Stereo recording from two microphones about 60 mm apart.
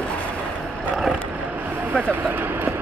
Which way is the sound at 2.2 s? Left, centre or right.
Right.